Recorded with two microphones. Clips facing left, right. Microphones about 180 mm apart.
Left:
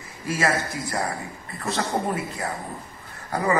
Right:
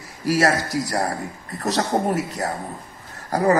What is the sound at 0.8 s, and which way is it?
A man's voice, 45° right (ahead or behind).